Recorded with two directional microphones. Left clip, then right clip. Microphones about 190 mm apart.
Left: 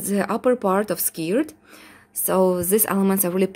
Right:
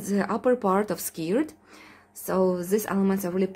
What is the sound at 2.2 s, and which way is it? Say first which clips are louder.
A woman's voice: left 5 dB; 35° left (ahead or behind).